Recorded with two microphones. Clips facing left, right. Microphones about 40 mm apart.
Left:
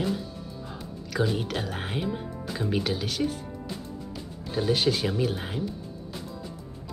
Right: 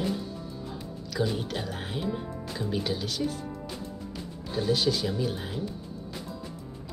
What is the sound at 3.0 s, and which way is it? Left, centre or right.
Speech, left.